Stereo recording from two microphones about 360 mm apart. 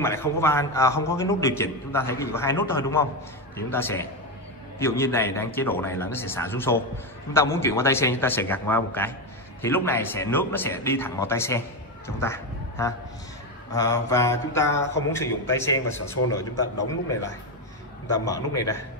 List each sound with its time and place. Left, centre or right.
0.0 s a man's voice: centre
18.2 s a man's voice: centre